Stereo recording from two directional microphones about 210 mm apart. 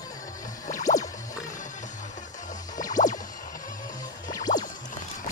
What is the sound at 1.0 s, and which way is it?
Music, 15° left (ahead or behind).